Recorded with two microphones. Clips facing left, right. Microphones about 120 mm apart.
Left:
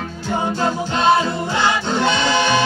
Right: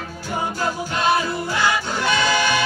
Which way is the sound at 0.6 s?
25° left (ahead or behind).